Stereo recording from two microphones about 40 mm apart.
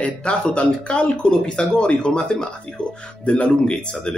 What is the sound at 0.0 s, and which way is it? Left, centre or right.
Speech, left.